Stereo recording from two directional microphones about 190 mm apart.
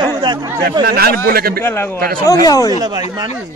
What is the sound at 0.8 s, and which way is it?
Speech, 55° right (ahead or behind).